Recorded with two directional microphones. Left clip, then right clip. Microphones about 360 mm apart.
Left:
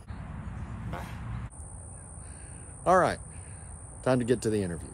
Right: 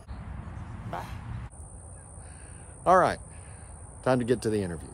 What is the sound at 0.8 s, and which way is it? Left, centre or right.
Speech, centre.